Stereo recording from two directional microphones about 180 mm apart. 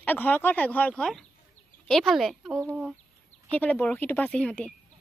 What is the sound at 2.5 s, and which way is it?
Speech, 15° right (ahead or behind).